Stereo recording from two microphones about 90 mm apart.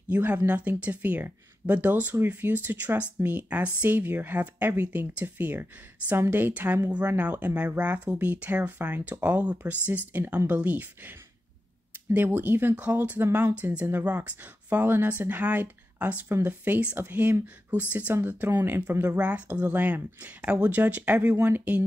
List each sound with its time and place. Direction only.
0.1 s speech: 20° right (ahead or behind)